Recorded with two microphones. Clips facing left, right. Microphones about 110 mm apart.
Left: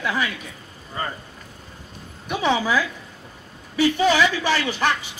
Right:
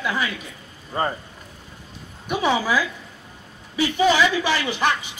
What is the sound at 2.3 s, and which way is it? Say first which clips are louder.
Speech: even; 10° right (ahead or behind).